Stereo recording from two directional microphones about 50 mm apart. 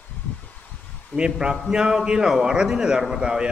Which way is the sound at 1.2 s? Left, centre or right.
Centre.